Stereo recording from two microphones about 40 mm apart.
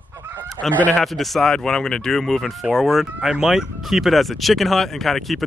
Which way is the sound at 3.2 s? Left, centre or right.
Centre.